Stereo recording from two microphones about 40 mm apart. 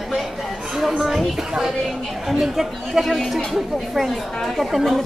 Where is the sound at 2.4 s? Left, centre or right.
Centre.